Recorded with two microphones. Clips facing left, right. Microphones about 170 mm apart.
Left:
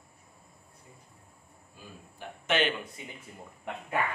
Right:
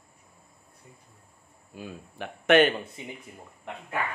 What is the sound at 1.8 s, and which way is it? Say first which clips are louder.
Speech: right 9 dB; 70° right (ahead or behind).